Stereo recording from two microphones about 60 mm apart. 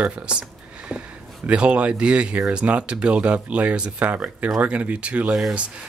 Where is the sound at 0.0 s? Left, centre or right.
Centre.